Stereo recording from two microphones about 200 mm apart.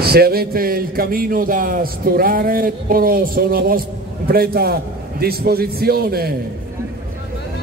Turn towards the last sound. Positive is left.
turn(degrees=-50)  # may be behind; listen again after turning